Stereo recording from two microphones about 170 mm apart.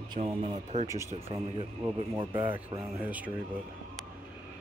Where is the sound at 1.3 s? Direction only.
30° right (ahead or behind).